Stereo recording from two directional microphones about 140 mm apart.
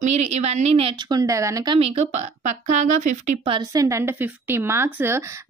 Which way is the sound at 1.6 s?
45° right (ahead or behind).